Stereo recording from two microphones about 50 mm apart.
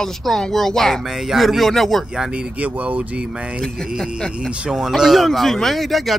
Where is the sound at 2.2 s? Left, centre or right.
Centre.